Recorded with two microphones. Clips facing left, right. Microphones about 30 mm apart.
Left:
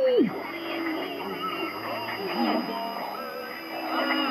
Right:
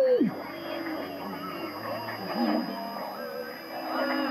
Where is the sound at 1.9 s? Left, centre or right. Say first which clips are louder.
Left 3 dB; left.